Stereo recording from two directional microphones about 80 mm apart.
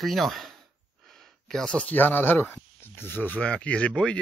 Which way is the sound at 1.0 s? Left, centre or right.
Centre.